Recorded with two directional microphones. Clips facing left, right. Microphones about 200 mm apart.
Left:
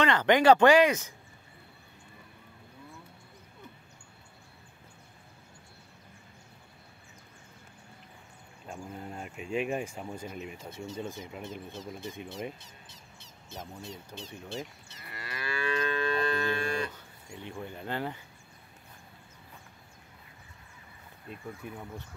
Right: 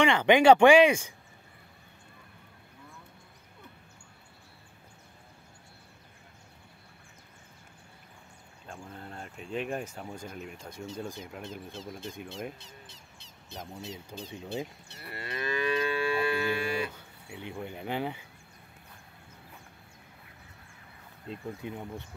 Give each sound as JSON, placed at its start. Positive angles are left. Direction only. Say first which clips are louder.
{"t": 0.0, "sound": "speech", "louder": "right 2 dB", "side_deg": -10}
{"t": 8.6, "sound": "speech", "louder": "left 3 dB", "side_deg": 10}
{"t": 13.8, "sound": "speech", "louder": "right 2 dB", "side_deg": -20}
{"t": 15.0, "sound": "livestock", "louder": "right 5 dB", "side_deg": -25}
{"t": 21.3, "sound": "speech", "louder": "right 4 dB", "side_deg": -20}